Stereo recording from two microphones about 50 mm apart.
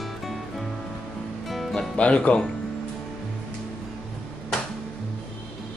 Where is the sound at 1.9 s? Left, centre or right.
Left.